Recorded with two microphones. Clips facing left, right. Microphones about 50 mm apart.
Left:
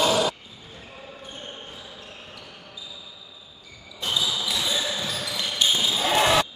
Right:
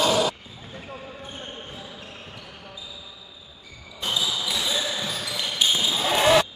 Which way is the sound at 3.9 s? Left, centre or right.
Centre.